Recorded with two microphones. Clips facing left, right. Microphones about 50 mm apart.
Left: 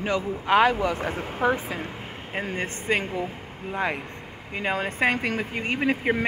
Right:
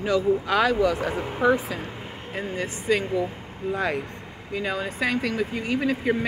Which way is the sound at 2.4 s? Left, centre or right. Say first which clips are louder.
Right 2 dB; left.